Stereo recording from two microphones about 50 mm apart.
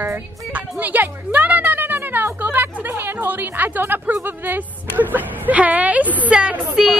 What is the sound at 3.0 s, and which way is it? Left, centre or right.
A woman's voice, right.